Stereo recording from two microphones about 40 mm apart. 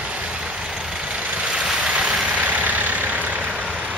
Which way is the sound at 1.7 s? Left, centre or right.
Right.